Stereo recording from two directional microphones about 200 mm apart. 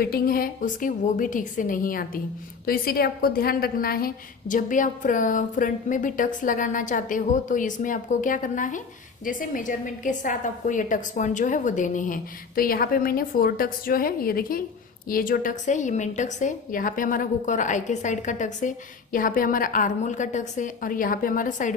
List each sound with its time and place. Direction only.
0.0 s a woman's voice: 50° left (ahead or behind)